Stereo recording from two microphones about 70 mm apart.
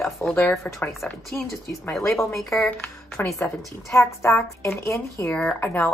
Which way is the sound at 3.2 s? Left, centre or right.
Left.